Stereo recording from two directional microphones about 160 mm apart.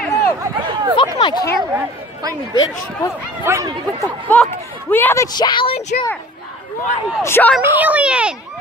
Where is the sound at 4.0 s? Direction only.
5° left (ahead or behind); by 5.9 s 40° left (ahead or behind).